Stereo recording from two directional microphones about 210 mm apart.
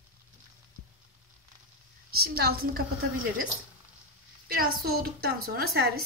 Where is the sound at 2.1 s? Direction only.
50° right (ahead or behind).